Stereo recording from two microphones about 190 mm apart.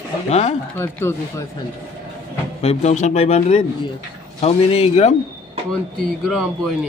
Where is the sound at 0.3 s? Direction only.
35° left (ahead or behind).